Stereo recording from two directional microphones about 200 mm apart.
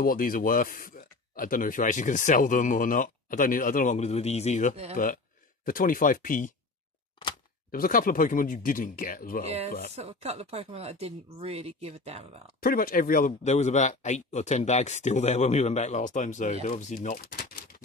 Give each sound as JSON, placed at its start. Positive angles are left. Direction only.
{"t": 0.0, "sound": "speech", "side_deg": 45}
{"t": 7.7, "sound": "speech", "side_deg": 45}
{"t": 9.9, "sound": "speech", "side_deg": -30}
{"t": 12.5, "sound": "speech", "side_deg": 45}